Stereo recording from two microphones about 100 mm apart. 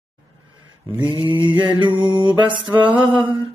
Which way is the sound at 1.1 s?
60° right (ahead or behind).